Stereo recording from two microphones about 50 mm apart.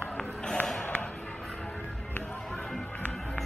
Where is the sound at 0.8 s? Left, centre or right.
Left.